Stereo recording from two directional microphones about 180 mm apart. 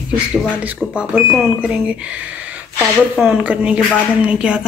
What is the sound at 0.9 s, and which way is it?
A woman's voice, 5° right (ahead or behind).